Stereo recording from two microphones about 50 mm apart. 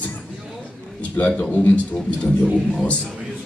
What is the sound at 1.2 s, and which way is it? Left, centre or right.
Beatboxing, left.